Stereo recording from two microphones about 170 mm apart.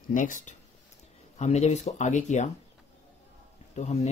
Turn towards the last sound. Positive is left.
turn(degrees=40)  # may be behind; listen again after turning